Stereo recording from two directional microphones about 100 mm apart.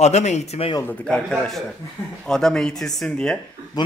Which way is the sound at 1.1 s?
10° left (ahead or behind).